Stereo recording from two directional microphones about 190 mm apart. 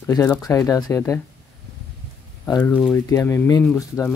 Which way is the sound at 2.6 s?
5° left (ahead or behind).